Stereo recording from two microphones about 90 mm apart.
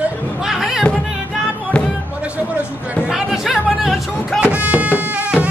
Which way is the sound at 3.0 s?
5° right (ahead or behind).